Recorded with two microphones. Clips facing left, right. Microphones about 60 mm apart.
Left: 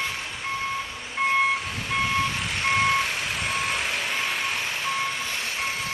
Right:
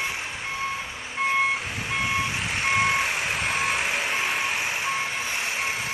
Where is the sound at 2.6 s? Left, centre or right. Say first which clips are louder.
Left 1 dB; centre.